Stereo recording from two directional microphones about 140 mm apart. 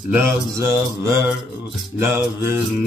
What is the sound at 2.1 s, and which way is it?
Mantra, 15° right (ahead or behind).